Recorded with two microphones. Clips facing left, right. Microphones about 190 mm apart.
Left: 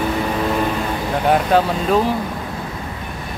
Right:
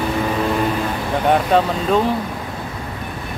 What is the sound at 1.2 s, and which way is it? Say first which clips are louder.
Speech: even; 5° left (ahead or behind).